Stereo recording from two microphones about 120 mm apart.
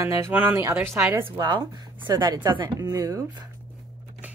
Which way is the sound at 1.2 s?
40° right (ahead or behind).